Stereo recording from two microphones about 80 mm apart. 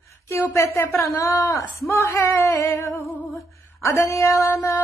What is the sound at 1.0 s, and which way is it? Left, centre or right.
A woman's voice, left.